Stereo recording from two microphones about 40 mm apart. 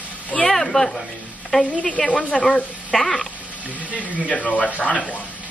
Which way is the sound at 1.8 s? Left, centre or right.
Left.